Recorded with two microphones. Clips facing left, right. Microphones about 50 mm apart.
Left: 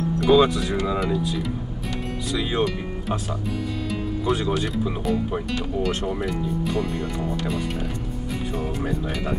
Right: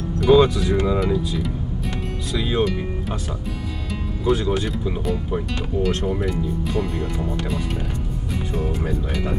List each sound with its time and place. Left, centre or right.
0.2 s speech: centre
4.3 s speech: centre